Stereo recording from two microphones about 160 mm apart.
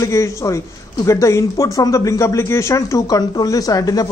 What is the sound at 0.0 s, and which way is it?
Speech, 20° left (ahead or behind).